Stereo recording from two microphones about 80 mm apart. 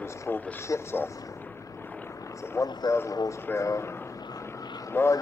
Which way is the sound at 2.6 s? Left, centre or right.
Left.